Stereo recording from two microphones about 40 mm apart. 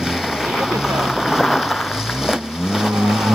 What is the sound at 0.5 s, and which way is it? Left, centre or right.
Boat, centre.